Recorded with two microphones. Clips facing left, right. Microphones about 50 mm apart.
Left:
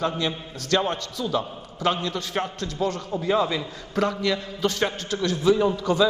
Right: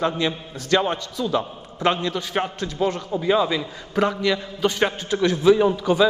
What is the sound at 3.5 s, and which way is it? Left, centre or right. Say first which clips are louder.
A man's voice: right 3 dB; centre.